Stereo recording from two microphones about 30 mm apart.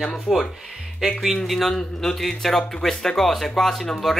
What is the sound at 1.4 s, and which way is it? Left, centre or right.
Speech, centre.